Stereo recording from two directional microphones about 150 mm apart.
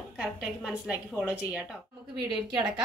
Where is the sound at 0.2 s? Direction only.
10° right (ahead or behind).